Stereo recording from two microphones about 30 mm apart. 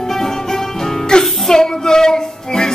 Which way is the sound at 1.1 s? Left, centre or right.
Left.